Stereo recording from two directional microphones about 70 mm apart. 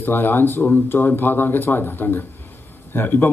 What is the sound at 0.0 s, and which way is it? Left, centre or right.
A man's voice, left.